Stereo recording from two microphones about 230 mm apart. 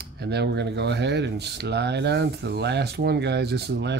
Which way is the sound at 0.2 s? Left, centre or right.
Right.